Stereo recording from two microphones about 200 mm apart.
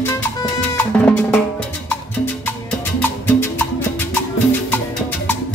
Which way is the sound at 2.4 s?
10° left (ahead or behind).